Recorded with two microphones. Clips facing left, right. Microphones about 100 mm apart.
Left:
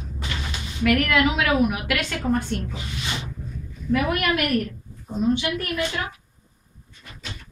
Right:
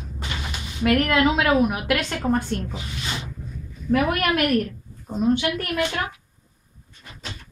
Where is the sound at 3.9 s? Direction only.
45° right (ahead or behind).